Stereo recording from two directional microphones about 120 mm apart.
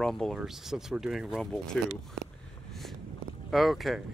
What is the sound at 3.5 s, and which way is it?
Speech, centre (ahead or behind).